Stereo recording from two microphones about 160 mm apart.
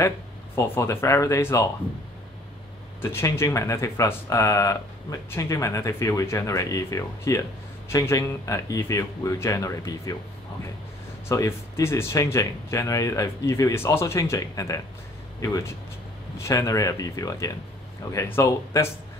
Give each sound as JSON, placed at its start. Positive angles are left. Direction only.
{"t": 0.7, "sound": "speech", "side_deg": 15}
{"t": 3.0, "sound": "speech", "side_deg": 15}
{"t": 11.2, "sound": "speech", "side_deg": 20}